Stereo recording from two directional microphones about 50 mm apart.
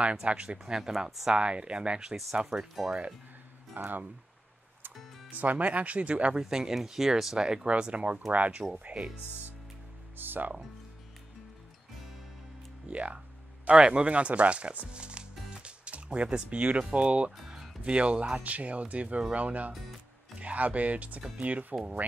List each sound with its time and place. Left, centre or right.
0.0 s speech: right
0.7 s speech: centre
3.7 s speech: right
5.3 s speech: right
6.4 s speech: centre
7.7 s speech: right
10.1 s speech: right
12.8 s speech: right
17.4 s music: centre
17.8 s speech: right
19.7 s music: centre
20.3 s speech: right